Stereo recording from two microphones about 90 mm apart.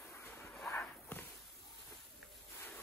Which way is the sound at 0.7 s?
20° left (ahead or behind).